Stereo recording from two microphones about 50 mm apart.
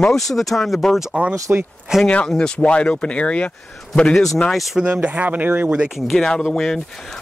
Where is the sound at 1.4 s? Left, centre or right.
Right.